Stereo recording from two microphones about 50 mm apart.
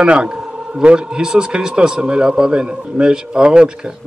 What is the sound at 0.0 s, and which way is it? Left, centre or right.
A man's voice, centre.